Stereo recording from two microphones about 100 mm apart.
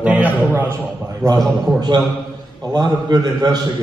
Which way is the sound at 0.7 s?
40° right (ahead or behind).